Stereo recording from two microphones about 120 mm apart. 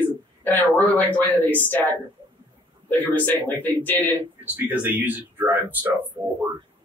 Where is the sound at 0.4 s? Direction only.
15° left (ahead or behind).